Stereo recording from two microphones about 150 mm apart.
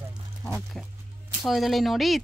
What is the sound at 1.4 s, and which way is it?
Speech, centre (ahead or behind).